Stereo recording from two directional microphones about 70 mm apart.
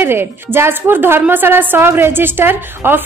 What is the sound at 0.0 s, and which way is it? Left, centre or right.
A woman's voice, right.